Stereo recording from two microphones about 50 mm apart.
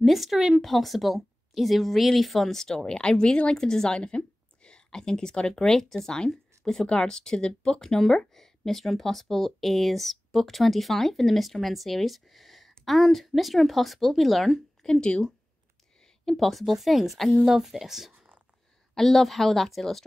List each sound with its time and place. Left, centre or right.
0.0 s speech: centre
14.9 s speech: centre
16.3 s speech: centre
18.9 s speech: centre